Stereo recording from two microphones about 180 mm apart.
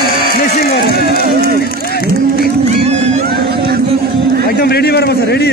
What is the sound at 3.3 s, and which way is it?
Music, 60° right (ahead or behind).